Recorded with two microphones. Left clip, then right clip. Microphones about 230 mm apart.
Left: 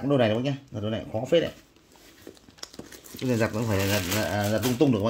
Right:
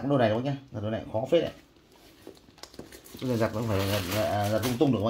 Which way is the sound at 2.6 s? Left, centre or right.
Left.